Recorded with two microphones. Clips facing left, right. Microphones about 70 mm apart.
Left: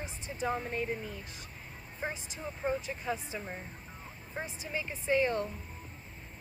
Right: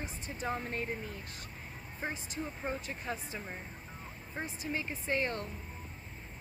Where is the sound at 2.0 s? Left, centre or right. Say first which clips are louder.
Even; centre.